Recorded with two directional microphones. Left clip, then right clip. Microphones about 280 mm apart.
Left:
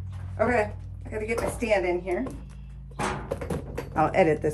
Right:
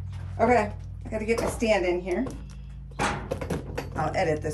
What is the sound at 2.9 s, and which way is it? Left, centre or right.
Music, centre.